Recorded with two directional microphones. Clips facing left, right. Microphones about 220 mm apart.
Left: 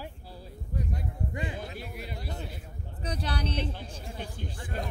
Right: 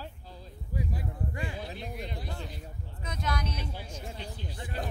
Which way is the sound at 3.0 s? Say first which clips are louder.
Left 2 dB; 35° left (ahead or behind).